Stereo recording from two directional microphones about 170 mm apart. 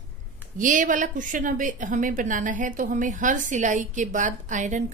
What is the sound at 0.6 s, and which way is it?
A woman's voice, 50° right (ahead or behind).